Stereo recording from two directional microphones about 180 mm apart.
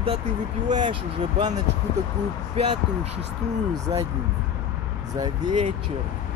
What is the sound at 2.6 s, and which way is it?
Speech, 35° right (ahead or behind).